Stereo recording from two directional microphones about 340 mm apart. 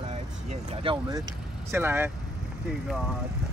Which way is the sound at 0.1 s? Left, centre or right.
Centre.